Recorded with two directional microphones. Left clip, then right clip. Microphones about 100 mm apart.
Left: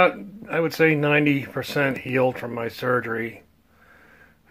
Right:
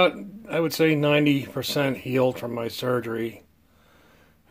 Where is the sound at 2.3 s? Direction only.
20° right (ahead or behind).